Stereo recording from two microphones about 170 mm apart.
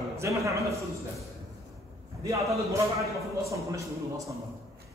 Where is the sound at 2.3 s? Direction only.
20° right (ahead or behind).